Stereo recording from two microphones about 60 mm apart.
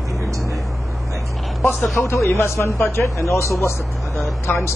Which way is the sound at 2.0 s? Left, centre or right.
Left.